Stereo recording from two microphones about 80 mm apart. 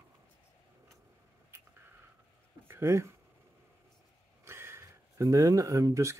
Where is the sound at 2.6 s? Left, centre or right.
Right.